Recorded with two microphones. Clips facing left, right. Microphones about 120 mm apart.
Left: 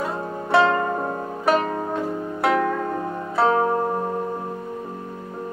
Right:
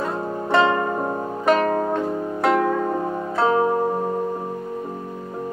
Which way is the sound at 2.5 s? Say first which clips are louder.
Right 2 dB; 10° right (ahead or behind).